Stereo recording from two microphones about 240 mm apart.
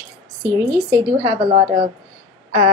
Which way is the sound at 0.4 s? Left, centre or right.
Centre.